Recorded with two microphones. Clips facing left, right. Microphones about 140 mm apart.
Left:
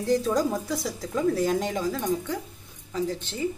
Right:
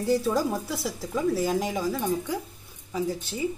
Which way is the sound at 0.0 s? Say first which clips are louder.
Left 1 dB; 5° right (ahead or behind).